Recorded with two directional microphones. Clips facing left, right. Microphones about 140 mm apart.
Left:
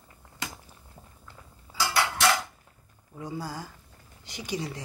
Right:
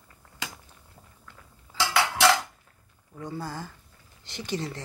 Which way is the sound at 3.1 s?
10° left (ahead or behind).